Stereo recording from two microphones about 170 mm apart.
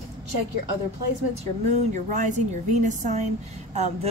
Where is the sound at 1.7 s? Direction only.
45° right (ahead or behind).